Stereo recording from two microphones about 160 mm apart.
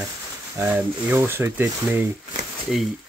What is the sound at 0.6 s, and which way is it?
Speech, 15° right (ahead or behind).